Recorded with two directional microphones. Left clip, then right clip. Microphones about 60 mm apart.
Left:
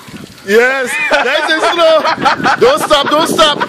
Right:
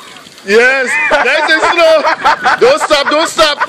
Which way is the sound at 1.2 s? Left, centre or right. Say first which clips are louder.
Right 2 dB; left.